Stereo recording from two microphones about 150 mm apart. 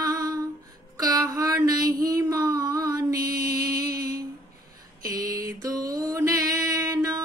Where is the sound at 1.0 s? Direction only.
25° right (ahead or behind).